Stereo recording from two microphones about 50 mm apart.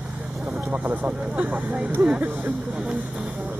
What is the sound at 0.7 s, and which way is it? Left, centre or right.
Speech, right.